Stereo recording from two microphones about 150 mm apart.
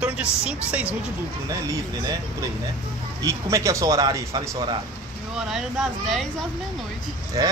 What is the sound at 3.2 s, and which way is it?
Speech, 20° right (ahead or behind).